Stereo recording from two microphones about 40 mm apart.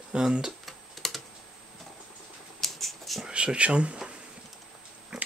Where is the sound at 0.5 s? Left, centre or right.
Centre.